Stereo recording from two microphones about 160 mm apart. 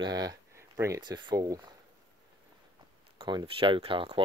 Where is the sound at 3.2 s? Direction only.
30° right (ahead or behind).